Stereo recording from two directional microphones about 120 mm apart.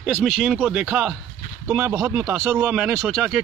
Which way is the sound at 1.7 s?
20° right (ahead or behind).